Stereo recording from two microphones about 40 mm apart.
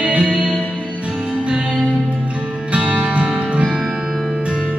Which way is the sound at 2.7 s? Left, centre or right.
Right.